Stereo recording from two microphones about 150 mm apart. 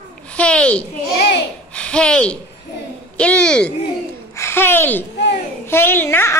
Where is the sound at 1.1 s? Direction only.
90° left.